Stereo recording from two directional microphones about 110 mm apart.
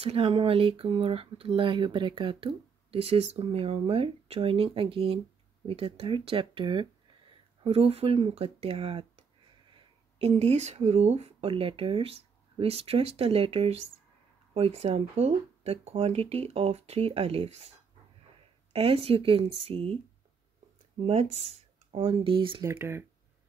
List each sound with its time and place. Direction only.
0.0 s speech: 65° right (ahead or behind)
18.7 s speech: 65° right (ahead or behind)
21.0 s speech: 75° right (ahead or behind); by 22.6 s 50° right (ahead or behind)
22.6 s speech: 25° right (ahead or behind)